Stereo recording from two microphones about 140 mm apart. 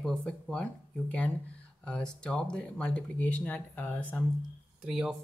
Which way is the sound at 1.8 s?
5° left (ahead or behind).